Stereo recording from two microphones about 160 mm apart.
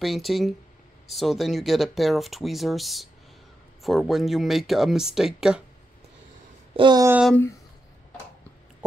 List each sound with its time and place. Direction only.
0.0 s speech: centre (ahead or behind)
6.8 s speech: 25° right (ahead or behind)